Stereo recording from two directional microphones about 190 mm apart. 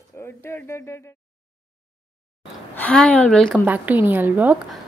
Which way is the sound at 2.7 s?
5° left (ahead or behind).